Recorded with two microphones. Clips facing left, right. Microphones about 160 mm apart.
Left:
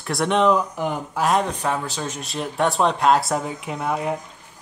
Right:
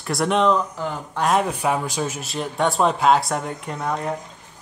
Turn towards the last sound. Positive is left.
turn(degrees=5)  # may be behind; listen again after turning